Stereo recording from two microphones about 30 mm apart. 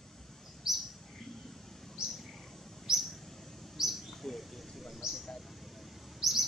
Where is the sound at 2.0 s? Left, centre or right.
Centre.